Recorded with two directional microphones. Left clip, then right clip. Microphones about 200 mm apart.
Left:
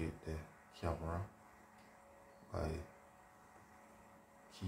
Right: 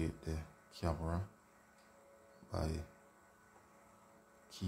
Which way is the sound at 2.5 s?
50° right (ahead or behind).